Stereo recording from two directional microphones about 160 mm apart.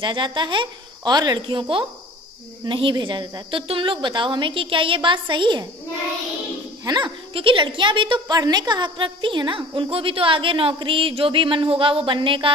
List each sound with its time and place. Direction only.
0.0 s a woman's voice: 30° right (ahead or behind)
6.8 s a woman's voice: 25° right (ahead or behind)